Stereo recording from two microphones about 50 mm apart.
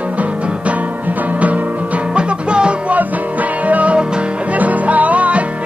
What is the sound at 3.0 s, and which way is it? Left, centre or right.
Music, right.